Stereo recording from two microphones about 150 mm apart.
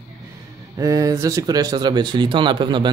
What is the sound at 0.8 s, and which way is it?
Speech, 20° right (ahead or behind).